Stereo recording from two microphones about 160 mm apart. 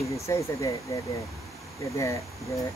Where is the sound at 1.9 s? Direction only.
20° left (ahead or behind).